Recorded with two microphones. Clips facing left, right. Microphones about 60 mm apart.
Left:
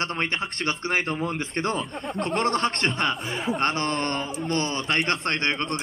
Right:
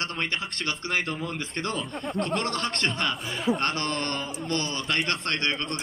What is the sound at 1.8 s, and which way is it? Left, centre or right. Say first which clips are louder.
Speech: left 2 dB; centre.